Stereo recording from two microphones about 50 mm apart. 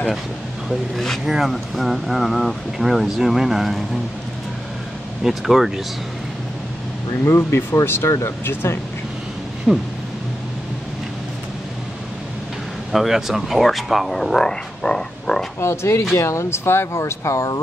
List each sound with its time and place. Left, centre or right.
0.9 s speech: centre
1.2 s speech: centre
5.2 s speech: centre
7.2 s speech: left
9.7 s a sound: right
12.9 s speech: centre
15.6 s speech: left
16.2 s speech: left